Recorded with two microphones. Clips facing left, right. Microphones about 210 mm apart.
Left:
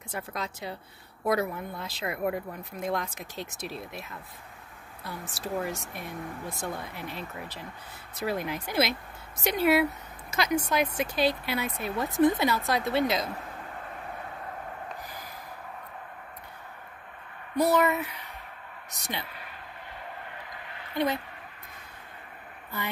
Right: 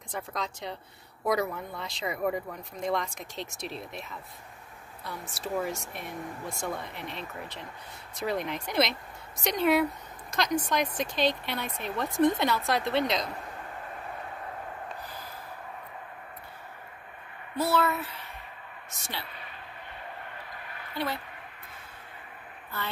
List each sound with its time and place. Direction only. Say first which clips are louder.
0.1 s speech: even; 5° left (ahead or behind)
17.6 s speech: left 3 dB; 15° left (ahead or behind)
20.9 s speech: left 5 dB; 20° left (ahead or behind)